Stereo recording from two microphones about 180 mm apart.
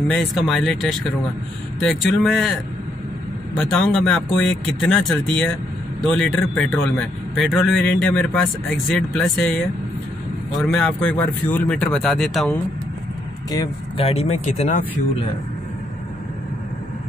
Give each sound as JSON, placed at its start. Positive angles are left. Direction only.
{"t": 0.1, "sound": "speech", "side_deg": 0}
{"t": 3.5, "sound": "a man's voice", "side_deg": 5}
{"t": 10.6, "sound": "speech", "side_deg": 0}
{"t": 13.9, "sound": "speech", "side_deg": 35}